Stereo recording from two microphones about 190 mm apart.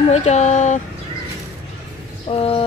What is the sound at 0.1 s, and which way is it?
Speech, 35° left (ahead or behind).